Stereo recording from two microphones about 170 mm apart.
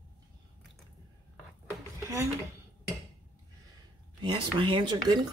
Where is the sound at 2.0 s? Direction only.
15° right (ahead or behind).